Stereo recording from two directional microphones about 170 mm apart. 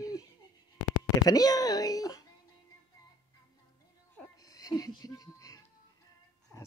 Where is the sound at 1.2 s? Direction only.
20° left (ahead or behind).